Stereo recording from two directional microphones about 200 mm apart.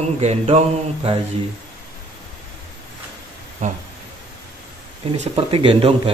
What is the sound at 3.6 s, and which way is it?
Mantra, 35° right (ahead or behind).